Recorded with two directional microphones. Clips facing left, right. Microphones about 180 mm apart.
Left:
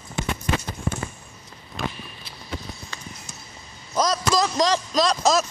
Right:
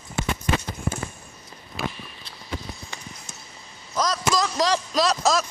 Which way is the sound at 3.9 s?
20° left (ahead or behind).